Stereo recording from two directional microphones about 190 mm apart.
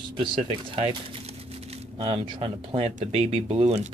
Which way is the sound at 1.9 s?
30° right (ahead or behind).